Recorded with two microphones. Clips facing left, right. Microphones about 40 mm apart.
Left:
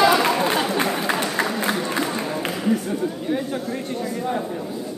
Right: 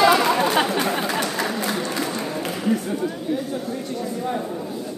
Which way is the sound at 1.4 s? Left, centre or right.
Left.